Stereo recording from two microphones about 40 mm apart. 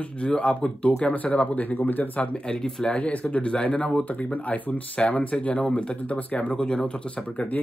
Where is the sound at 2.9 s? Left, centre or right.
Left.